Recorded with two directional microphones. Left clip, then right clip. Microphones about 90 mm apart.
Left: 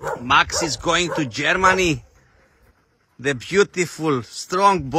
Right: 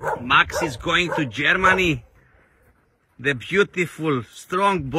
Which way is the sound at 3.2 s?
30° left (ahead or behind).